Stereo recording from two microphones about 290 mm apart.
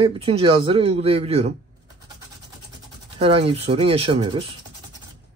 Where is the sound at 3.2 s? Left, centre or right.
Centre.